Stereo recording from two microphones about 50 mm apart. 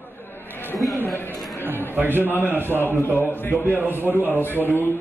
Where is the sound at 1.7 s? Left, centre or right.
Right.